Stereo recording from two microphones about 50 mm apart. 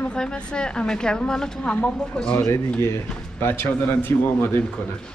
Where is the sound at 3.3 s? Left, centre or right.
Left.